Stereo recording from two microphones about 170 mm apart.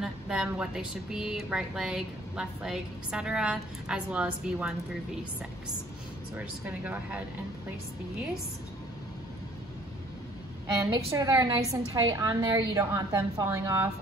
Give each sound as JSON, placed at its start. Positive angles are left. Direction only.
{"t": 0.0, "sound": "speech", "side_deg": -5}
{"t": 6.3, "sound": "speech", "side_deg": -10}
{"t": 10.9, "sound": "a woman's voice", "side_deg": -20}